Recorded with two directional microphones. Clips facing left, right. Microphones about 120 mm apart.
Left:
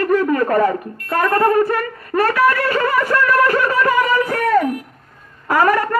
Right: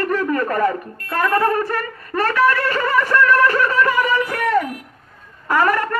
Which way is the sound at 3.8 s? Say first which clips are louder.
Left 2 dB; 35° left (ahead or behind).